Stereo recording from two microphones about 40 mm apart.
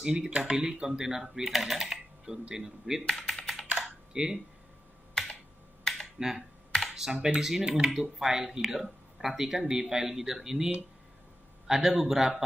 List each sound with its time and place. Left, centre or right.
0.0 s speech: centre
2.2 s speech: centre
3.1 s typing: centre
4.1 s speech: centre
6.1 s speech: centre